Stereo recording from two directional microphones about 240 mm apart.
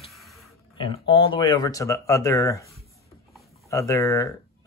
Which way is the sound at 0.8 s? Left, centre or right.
Left.